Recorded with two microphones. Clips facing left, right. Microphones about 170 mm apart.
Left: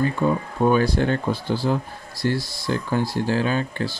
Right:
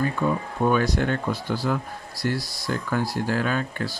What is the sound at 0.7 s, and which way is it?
Speech, 30° left (ahead or behind).